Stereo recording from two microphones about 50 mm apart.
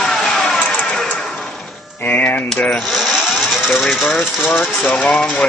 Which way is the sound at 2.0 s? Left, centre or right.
Left.